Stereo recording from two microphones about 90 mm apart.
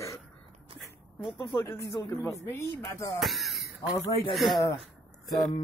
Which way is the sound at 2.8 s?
35° left (ahead or behind).